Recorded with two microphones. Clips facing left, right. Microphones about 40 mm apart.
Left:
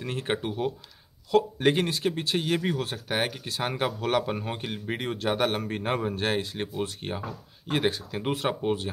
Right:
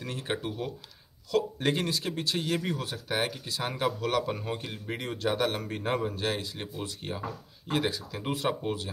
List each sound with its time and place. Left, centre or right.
0.0 s speech: left